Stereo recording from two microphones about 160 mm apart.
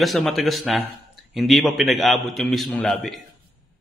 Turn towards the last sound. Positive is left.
turn(degrees=0)  # may be behind; listen again after turning